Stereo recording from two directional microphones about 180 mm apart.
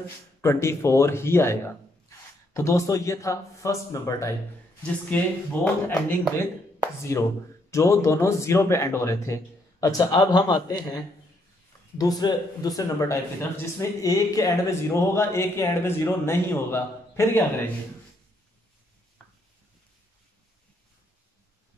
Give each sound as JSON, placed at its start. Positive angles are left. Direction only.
{"t": 0.4, "sound": "speech", "side_deg": 15}
{"t": 12.0, "sound": "speech", "side_deg": 20}